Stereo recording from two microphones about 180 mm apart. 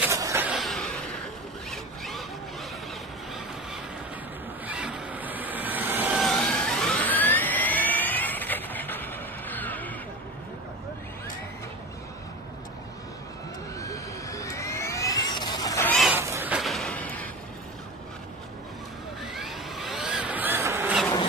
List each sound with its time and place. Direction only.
0.0 s vehicle: 15° right (ahead or behind); by 1.1 s 5° left (ahead or behind)
1.7 s zipper: centre (ahead or behind)
4.6 s vehicle: 5° right (ahead or behind)
13.7 s vehicle: 20° left (ahead or behind)
16.2 s a sound: 15° right (ahead or behind)
16.5 s a sound: centre (ahead or behind)
19.3 s vehicle: centre (ahead or behind)